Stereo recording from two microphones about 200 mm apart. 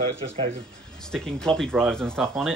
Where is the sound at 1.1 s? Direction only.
5° left (ahead or behind).